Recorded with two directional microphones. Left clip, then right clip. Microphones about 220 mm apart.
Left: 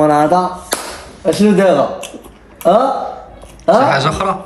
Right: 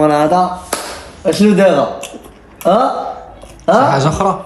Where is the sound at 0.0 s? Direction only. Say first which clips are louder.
Even; centre (ahead or behind).